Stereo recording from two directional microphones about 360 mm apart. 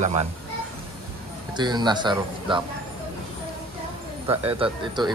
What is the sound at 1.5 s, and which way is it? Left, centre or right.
Speech, centre.